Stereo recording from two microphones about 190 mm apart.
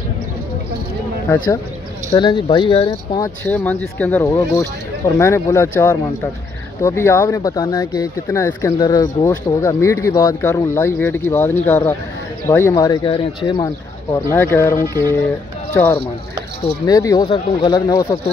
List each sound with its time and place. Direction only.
2.1 s speech: 25° left (ahead or behind)
14.3 s speech: 10° left (ahead or behind)